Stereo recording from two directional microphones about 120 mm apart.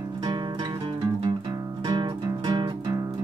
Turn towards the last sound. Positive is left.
turn(degrees=-30)  # may be behind; listen again after turning